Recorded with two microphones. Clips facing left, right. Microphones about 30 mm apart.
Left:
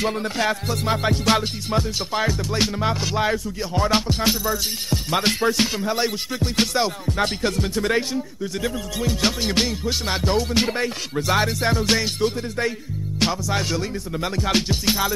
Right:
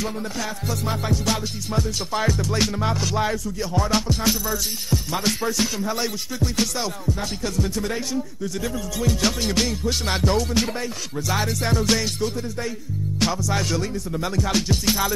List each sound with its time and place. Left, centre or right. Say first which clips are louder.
0.0 s music: left 5 dB; left
0.7 s music: left 3 dB; left
2.1 s music: even; centre
3.7 s speech: left 2 dB; left
4.9 s music: left 3 dB; left
7.1 s music: left 4 dB; left
9.0 s music: even; centre
10.3 s speech: left 2 dB; left
11.1 s music: left 4 dB; left
11.6 s speech: left 1 dB; centre
12.2 s music: left 4 dB; left
13.2 s speech: left 1 dB; centre
14.7 s music: even; centre